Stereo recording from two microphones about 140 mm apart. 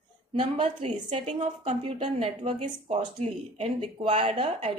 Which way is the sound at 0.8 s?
50° right (ahead or behind).